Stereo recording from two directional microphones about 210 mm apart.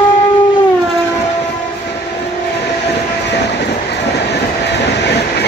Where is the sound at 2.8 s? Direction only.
55° left (ahead or behind).